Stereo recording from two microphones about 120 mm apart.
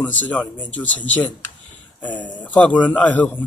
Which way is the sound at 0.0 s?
15° left (ahead or behind).